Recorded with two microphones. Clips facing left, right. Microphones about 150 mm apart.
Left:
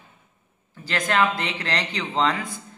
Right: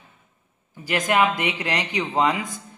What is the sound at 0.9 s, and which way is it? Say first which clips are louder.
A man's voice: right 2 dB; 15° right (ahead or behind).